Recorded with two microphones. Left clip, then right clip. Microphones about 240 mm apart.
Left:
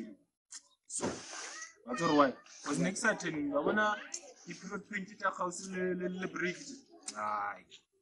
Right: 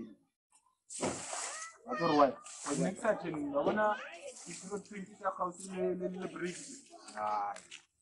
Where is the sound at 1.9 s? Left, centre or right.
Left.